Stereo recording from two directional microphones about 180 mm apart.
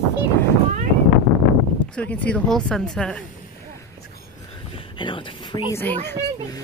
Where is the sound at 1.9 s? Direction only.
10° left (ahead or behind).